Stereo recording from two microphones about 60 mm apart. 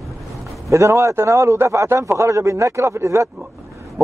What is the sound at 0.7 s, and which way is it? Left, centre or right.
A man's voice, right.